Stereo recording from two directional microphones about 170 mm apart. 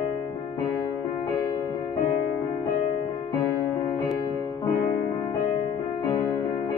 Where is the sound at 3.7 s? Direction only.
15° left (ahead or behind).